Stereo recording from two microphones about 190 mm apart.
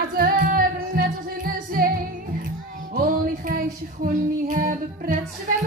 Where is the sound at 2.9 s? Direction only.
50° right (ahead or behind).